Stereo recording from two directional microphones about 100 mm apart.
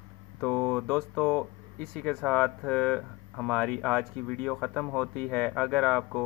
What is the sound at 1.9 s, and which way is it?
Speech, 10° left (ahead or behind).